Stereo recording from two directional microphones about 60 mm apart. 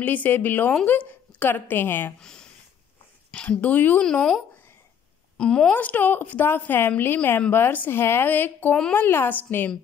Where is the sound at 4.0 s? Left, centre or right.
Centre.